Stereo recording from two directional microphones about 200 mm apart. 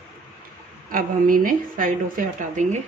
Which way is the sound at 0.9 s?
45° right (ahead or behind).